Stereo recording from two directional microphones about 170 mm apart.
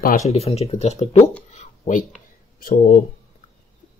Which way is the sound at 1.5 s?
45° left (ahead or behind).